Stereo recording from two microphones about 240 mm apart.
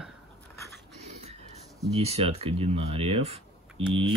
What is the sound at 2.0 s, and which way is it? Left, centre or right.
Speech, right.